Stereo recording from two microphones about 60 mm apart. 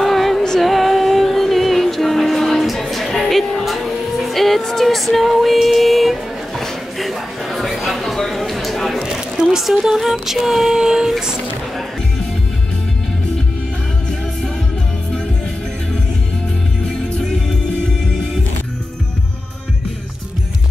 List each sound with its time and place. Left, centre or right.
0.0 s music: centre
6.6 s a sound: centre
9.0 s speech: centre
16.8 s music: centre